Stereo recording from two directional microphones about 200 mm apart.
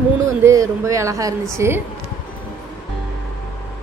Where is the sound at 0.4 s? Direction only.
15° right (ahead or behind).